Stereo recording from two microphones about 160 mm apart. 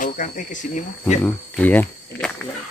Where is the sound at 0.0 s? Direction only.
55° left (ahead or behind).